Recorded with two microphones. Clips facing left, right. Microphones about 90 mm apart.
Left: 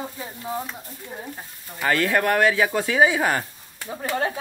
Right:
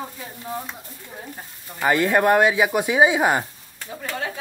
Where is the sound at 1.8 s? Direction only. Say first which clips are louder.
Right 3 dB; 20° right (ahead or behind).